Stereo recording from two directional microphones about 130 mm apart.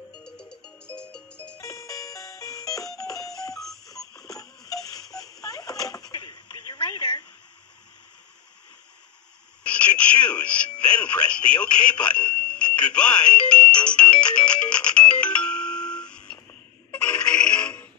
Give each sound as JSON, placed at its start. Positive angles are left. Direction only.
{"t": 0.2, "sound": "music", "side_deg": 5}
{"t": 1.6, "sound": "music", "side_deg": 25}
{"t": 3.3, "sound": "alarm clock", "side_deg": 25}
{"t": 3.8, "sound": "a sound", "side_deg": 25}
{"t": 9.7, "sound": "music", "side_deg": 10}
{"t": 11.0, "sound": "a sound", "side_deg": 10}
{"t": 16.9, "sound": "music", "side_deg": 10}